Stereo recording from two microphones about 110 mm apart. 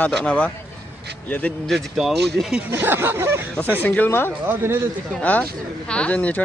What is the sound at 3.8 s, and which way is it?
Speech, 15° left (ahead or behind).